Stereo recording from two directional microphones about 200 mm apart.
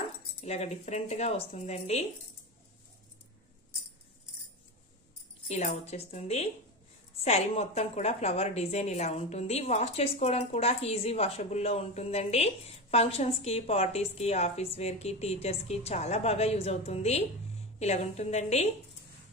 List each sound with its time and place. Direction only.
0.4 s a woman's voice: 35° left (ahead or behind)
5.5 s a woman's voice: 35° left (ahead or behind)